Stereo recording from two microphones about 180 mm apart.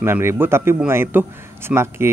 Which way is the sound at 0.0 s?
15° right (ahead or behind).